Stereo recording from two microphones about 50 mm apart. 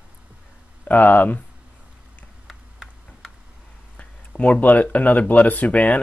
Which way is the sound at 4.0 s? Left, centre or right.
Left.